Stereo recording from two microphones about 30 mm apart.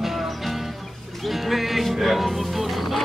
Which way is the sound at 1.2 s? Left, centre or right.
Centre.